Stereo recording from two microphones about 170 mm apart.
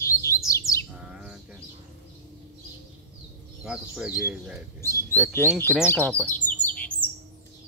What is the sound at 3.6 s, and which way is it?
Speech, 5° right (ahead or behind).